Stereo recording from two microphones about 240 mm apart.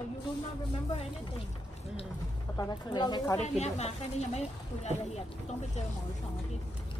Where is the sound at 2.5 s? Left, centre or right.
Centre.